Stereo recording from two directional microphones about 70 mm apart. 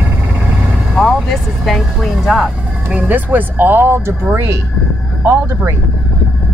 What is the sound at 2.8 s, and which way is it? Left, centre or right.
Speech, right.